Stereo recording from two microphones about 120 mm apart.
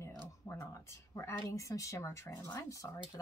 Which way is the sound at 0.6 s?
25° left (ahead or behind).